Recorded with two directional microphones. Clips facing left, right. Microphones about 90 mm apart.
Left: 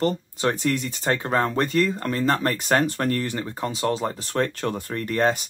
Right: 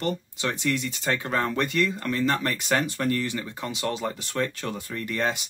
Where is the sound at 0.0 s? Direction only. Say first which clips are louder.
Left 5 dB; 40° left (ahead or behind).